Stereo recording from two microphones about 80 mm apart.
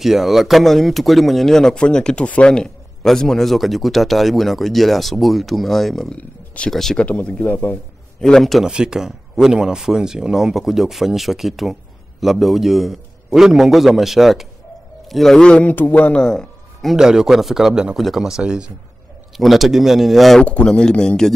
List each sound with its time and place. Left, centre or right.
0.0 s speech: centre
6.1 s speech: centre
6.7 s speech: centre
7.1 s speech: centre
8.2 s speech: centre
8.6 s a man's voice: centre
16.9 s speech: centre
20.4 s speech: centre